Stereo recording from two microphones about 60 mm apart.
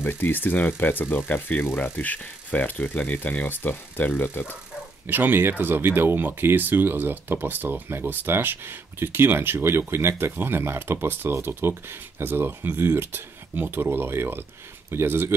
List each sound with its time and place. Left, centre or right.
0.0 s speech: left
5.0 s speech: right